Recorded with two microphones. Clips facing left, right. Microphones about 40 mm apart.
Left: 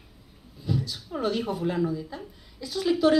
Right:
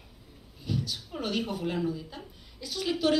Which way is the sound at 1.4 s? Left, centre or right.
Left.